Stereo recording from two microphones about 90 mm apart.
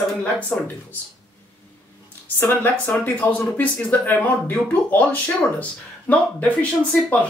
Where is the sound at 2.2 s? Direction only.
20° left (ahead or behind).